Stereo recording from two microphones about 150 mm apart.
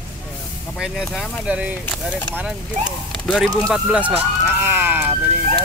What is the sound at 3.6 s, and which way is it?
Speech, 5° right (ahead or behind).